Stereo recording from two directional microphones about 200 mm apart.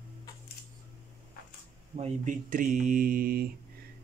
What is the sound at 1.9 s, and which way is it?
Speech, 35° right (ahead or behind).